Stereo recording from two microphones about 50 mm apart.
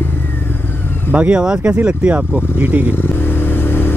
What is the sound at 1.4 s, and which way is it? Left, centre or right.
Speech, centre.